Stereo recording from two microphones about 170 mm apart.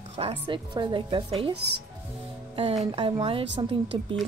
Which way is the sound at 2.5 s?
35° right (ahead or behind).